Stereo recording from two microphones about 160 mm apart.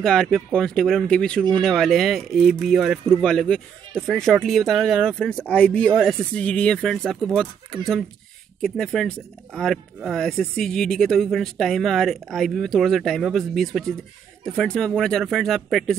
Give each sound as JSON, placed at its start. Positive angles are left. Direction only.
{"t": 0.0, "sound": "speech", "side_deg": 5}